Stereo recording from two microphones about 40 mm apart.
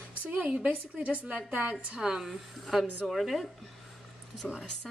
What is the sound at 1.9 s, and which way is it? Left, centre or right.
Speech, centre.